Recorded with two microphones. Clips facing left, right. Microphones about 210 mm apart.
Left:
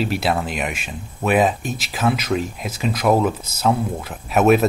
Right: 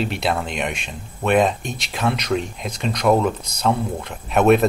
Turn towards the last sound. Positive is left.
turn(degrees=5)  # may be behind; listen again after turning